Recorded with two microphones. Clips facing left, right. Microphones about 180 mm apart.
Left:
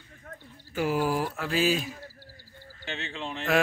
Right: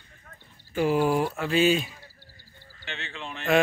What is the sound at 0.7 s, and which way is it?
Speech, centre (ahead or behind).